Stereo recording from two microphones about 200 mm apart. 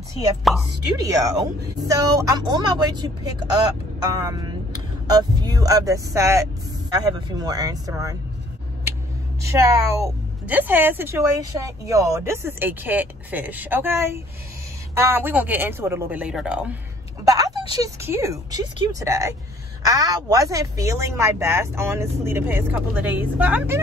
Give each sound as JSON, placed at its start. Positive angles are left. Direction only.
{"t": 0.5, "sound": "speech", "side_deg": 0}
{"t": 1.0, "sound": "speech", "side_deg": -15}
{"t": 9.4, "sound": "a woman's voice", "side_deg": -15}
{"t": 17.2, "sound": "a woman's voice", "side_deg": -20}